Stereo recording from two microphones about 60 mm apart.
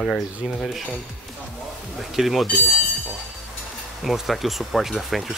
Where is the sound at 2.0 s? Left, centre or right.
Centre.